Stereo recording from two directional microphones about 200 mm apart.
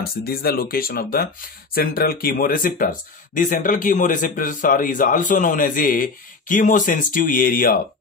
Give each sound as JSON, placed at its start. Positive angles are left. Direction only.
{"t": 0.2, "sound": "speech", "side_deg": 50}